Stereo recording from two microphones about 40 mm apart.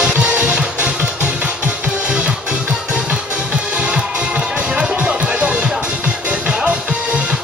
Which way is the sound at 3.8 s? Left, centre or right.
Right.